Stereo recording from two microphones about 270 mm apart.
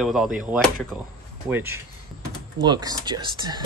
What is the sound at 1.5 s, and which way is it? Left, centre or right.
Speech, centre.